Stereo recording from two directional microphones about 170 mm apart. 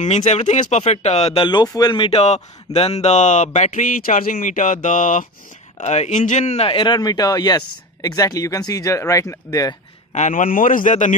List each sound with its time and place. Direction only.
0.0 s a man's voice: 45° left (ahead or behind); by 9.8 s 20° left (ahead or behind)
10.1 s speech: 50° left (ahead or behind)